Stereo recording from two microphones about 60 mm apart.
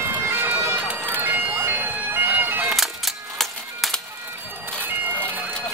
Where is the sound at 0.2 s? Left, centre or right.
Right.